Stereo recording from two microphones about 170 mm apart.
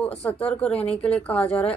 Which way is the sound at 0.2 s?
10° left (ahead or behind).